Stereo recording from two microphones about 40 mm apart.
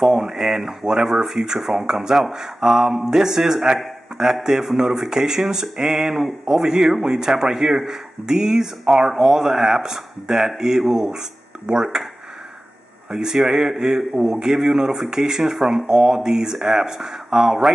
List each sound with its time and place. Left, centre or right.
0.0 s speech: centre
13.1 s speech: centre
15.9 s speech: right
16.3 s speech: centre